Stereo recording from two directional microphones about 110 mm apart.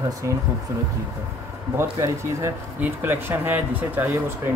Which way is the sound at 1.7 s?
25° right (ahead or behind).